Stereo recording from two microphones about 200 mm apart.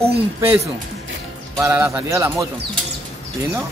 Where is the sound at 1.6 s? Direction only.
15° right (ahead or behind).